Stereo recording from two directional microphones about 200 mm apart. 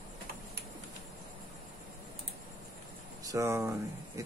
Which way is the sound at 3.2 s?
15° right (ahead or behind).